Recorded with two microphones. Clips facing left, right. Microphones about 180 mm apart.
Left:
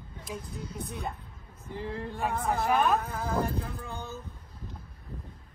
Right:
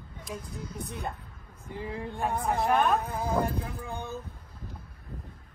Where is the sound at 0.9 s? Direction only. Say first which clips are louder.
Right 1 dB; centre (ahead or behind).